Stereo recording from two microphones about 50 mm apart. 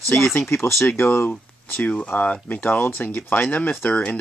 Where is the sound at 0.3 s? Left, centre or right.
Left.